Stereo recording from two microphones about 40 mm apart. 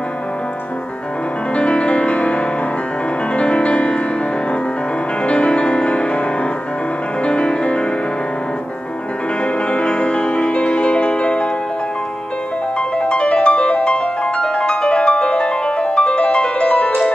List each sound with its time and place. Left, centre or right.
1.5 s music: left
5.2 s music: left
7.2 s music: left
9.4 s music: left
12.7 s music: left